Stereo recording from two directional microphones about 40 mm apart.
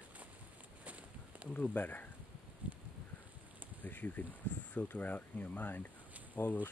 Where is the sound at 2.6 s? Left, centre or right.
Right.